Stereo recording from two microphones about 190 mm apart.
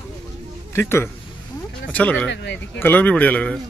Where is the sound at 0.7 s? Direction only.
15° left (ahead or behind).